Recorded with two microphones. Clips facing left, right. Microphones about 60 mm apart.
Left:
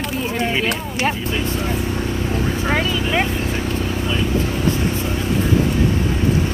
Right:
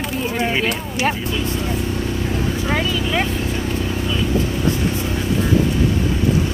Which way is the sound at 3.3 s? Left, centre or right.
Left.